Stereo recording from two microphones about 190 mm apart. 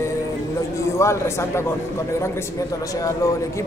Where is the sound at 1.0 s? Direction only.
15° left (ahead or behind).